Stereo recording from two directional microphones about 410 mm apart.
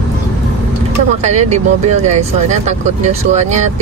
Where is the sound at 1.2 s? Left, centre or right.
Centre.